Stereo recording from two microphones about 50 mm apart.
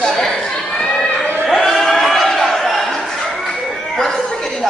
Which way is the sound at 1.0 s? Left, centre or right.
Left.